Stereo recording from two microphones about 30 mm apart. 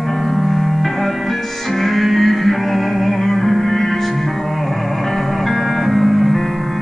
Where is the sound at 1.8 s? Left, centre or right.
Centre.